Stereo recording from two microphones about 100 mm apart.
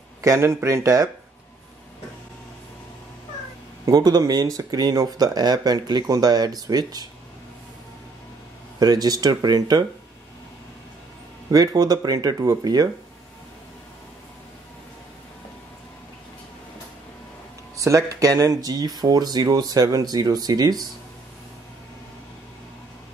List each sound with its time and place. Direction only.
0.2 s speech: 30° right (ahead or behind)
3.8 s speech: 40° right (ahead or behind)
8.7 s speech: 40° right (ahead or behind)
11.5 s speech: 40° right (ahead or behind)
17.7 s speech: 35° right (ahead or behind)